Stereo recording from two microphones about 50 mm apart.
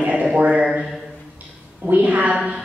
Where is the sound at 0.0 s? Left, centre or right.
Right.